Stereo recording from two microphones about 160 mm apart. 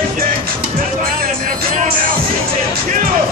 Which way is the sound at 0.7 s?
60° right (ahead or behind).